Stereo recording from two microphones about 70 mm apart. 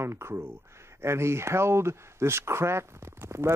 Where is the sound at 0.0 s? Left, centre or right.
Right.